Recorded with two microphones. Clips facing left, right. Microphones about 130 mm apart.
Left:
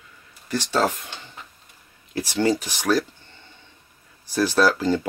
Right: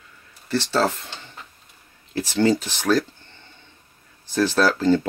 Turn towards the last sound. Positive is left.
turn(degrees=10)  # may be behind; listen again after turning